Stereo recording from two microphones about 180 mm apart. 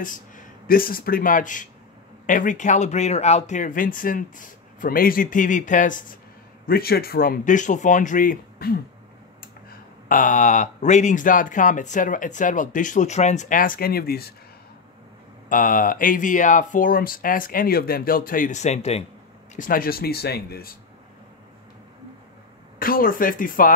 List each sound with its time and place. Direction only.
0.0 s speech: 50° left (ahead or behind)
6.6 s speech: 55° left (ahead or behind)
15.5 s speech: 50° left (ahead or behind)
19.5 s speech: 50° left (ahead or behind)
22.8 s speech: 50° left (ahead or behind)